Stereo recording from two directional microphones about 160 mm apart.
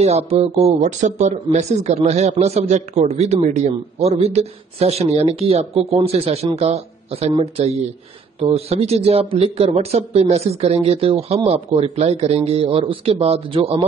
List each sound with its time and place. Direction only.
0.0 s speech: 40° right (ahead or behind)